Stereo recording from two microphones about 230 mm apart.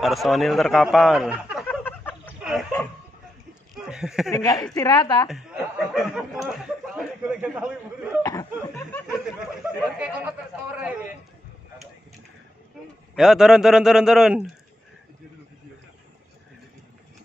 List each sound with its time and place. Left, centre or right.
0.0 s speech: centre
1.7 s a sound: centre
2.4 s dog: centre
3.7 s a sound: centre
4.3 s a woman's voice: centre
5.3 s a sound: centre
8.2 s chuckle: centre
9.9 s speech: centre
13.1 s speech: centre